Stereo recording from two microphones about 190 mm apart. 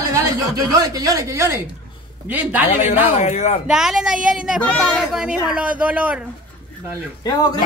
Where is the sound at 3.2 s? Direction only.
35° left (ahead or behind).